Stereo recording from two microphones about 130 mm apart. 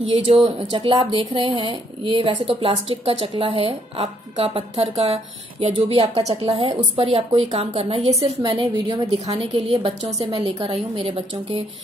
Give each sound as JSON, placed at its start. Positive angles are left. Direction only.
{"t": 0.1, "sound": "a woman's voice", "side_deg": -40}
{"t": 8.4, "sound": "a woman's voice", "side_deg": -35}
{"t": 9.3, "sound": "a woman's voice", "side_deg": -50}